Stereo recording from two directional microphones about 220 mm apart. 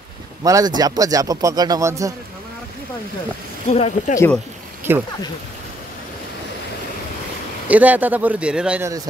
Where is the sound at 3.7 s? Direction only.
30° left (ahead or behind).